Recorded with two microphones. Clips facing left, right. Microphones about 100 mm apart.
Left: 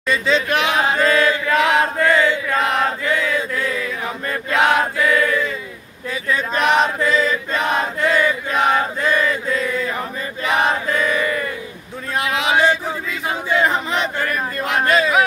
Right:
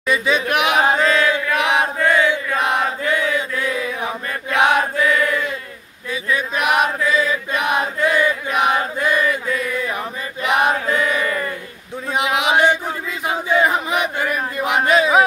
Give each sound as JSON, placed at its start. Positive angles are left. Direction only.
{"t": 0.1, "sound": "chant", "side_deg": -10}
{"t": 12.2, "sound": "a sound", "side_deg": -15}
{"t": 13.3, "sound": "choir", "side_deg": -10}